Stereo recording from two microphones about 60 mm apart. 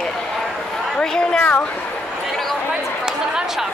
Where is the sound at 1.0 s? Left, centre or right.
Centre.